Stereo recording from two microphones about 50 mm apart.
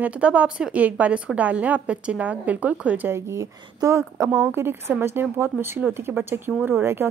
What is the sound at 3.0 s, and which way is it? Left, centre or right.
Speech, right.